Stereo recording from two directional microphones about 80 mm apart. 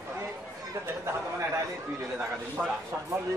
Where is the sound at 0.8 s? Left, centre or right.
Right.